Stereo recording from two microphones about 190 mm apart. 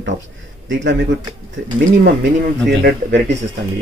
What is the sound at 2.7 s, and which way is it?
Speech, 65° right (ahead or behind).